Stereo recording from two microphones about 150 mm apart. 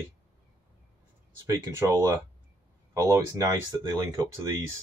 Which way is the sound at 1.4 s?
25° right (ahead or behind).